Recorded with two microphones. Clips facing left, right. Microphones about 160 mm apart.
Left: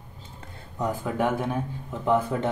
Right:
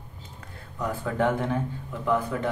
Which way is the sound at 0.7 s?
10° left (ahead or behind).